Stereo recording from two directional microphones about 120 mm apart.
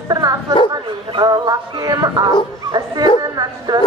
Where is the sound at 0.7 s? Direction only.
35° right (ahead or behind).